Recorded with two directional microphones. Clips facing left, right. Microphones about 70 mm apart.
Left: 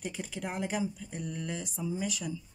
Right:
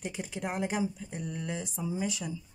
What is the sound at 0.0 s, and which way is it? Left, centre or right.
Speech, centre.